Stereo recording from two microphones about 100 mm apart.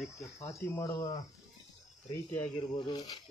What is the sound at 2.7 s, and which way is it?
Speech, 45° left (ahead or behind).